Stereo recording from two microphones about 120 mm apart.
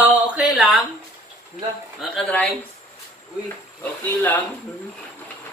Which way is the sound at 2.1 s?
10° left (ahead or behind).